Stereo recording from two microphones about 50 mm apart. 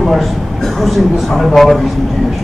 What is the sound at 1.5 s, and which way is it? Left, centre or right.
Speech, centre.